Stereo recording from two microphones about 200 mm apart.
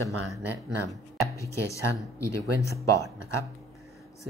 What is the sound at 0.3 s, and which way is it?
Speech, centre (ahead or behind).